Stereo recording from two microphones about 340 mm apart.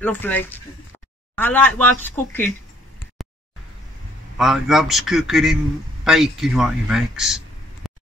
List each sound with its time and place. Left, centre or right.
0.0 s a man's voice: centre
4.4 s a man's voice: centre